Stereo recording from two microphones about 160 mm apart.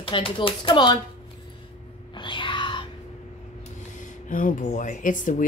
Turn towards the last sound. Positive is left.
turn(degrees=55)  # may be behind; listen again after turning